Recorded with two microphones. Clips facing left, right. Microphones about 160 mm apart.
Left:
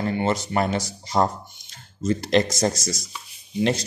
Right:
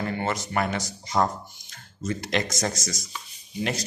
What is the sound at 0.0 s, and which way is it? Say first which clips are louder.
Speech: left 5 dB; 25° left (ahead or behind).